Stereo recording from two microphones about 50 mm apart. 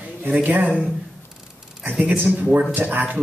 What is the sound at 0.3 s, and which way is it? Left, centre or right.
Speech, right.